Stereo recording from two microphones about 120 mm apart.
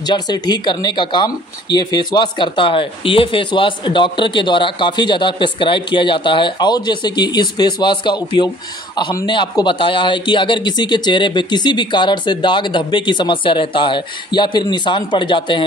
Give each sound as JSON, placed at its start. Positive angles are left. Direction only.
{"t": 0.0, "sound": "speech", "side_deg": 35}